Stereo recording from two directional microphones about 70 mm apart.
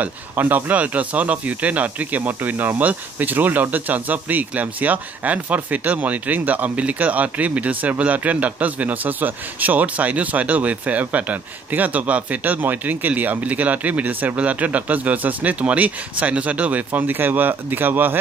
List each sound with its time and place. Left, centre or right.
0.0 s a man's voice: right